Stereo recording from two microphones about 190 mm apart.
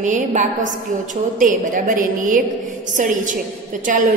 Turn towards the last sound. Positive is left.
turn(degrees=-45)  # may be behind; listen again after turning